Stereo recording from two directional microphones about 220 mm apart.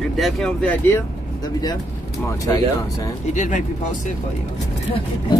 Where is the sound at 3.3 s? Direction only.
35° left (ahead or behind).